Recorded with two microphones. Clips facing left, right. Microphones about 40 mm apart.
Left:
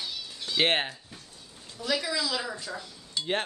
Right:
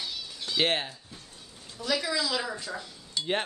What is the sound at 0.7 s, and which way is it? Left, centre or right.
Speech, left.